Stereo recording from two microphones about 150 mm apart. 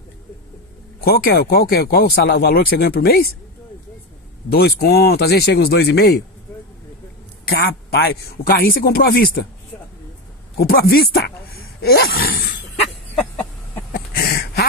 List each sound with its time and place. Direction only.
1.0 s speech: 90° left
4.5 s speech: 90° left
7.4 s speech: 90° left
10.6 s speech: 90° left
13.9 s a sound: 90° left